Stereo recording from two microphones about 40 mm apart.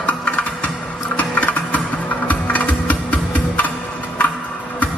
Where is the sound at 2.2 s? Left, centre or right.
Left.